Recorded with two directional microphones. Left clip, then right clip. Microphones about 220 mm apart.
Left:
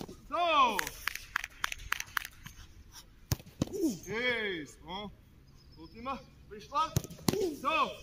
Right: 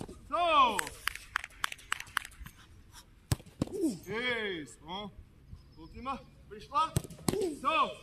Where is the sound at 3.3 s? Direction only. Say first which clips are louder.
Right 1 dB; 30° right (ahead or behind).